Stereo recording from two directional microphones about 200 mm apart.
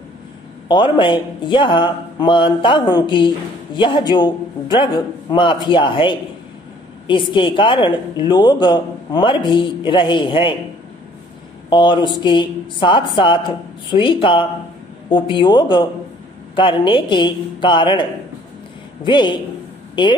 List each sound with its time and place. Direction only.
0.7 s speech: 25° left (ahead or behind)
11.7 s speech: 25° left (ahead or behind)
19.0 s speech: 25° left (ahead or behind)